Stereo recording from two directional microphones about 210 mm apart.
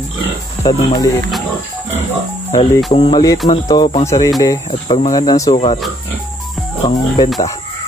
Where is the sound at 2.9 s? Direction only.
20° left (ahead or behind).